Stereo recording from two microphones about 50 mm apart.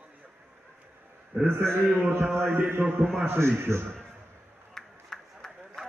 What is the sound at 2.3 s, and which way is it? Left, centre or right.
A man's voice, right.